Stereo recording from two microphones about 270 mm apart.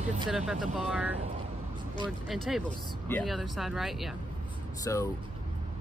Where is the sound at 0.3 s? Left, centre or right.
Centre.